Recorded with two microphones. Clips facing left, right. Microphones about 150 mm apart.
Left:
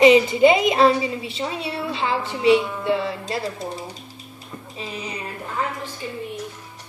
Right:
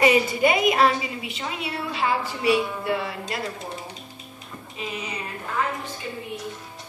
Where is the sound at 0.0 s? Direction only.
20° left (ahead or behind).